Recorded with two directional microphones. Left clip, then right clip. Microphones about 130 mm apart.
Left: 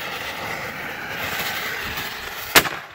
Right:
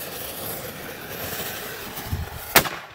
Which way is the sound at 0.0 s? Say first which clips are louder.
Left 6 dB; 50° right (ahead or behind).